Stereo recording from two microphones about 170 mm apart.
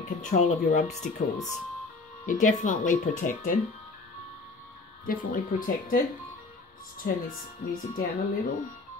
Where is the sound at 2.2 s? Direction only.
50° left (ahead or behind).